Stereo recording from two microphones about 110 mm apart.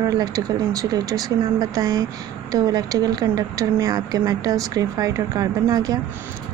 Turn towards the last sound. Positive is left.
turn(degrees=-30)  # may be behind; listen again after turning